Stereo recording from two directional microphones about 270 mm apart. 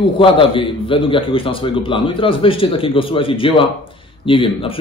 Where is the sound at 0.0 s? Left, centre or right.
Centre.